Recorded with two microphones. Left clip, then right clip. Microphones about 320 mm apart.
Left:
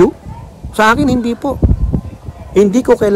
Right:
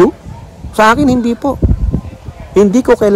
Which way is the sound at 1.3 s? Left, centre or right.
Right.